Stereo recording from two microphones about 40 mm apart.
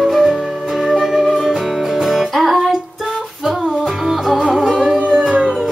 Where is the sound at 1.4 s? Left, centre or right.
Centre.